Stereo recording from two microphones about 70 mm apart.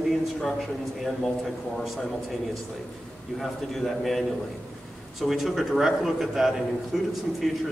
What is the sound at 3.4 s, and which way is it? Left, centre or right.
A man's voice, centre.